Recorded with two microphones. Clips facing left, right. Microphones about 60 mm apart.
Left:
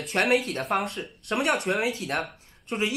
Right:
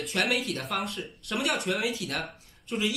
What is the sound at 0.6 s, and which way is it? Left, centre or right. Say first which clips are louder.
Speech: left 5 dB; left.